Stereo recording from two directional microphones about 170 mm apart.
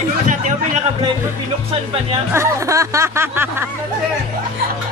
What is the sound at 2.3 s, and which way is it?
Snicker, 15° right (ahead or behind).